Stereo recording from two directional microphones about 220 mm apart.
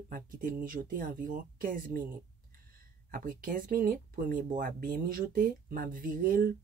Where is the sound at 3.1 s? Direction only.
40° right (ahead or behind).